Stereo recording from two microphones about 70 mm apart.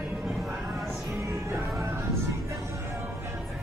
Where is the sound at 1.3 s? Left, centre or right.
Right.